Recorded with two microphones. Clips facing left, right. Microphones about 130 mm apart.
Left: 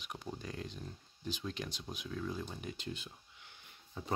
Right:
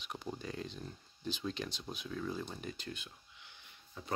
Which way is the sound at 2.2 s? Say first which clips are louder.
Right 1 dB; centre (ahead or behind).